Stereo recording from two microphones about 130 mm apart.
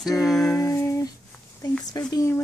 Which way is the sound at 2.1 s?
25° left (ahead or behind).